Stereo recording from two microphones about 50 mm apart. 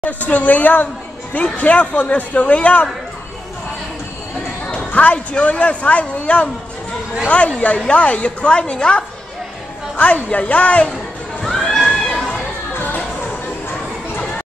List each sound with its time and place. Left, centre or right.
0.0 s a woman's voice: left
4.6 s music: left
5.3 s speech: left
9.9 s speech: left
11.4 s a sound: centre